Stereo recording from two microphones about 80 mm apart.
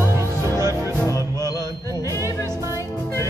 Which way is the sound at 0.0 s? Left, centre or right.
Right.